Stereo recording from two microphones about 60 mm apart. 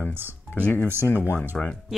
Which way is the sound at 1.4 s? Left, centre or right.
Centre.